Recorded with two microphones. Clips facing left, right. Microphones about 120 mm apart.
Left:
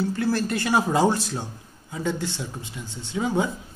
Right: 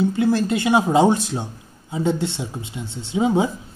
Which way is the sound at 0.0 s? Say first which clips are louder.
Right 5 dB; 20° right (ahead or behind).